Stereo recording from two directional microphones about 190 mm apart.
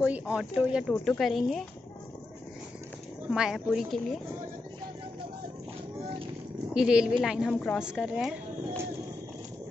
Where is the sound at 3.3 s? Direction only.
5° right (ahead or behind).